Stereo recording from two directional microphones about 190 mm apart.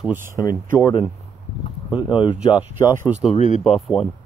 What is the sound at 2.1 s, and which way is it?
Speech, 25° left (ahead or behind).